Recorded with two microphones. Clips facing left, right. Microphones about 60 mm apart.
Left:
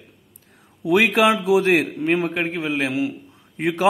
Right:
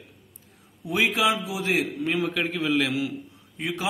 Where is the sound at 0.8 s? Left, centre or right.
Left.